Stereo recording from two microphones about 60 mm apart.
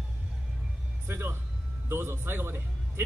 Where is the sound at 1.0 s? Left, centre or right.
Right.